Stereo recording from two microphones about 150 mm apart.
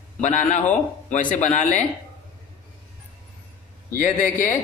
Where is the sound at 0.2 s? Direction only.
55° left (ahead or behind).